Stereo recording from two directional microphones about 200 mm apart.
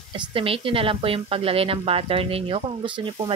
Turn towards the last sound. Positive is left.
turn(degrees=-25)  # may be behind; listen again after turning